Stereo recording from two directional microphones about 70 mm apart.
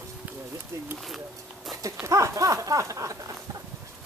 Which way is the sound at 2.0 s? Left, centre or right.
Right.